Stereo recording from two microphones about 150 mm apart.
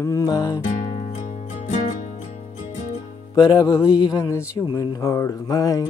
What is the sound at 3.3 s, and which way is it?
Music, 25° left (ahead or behind).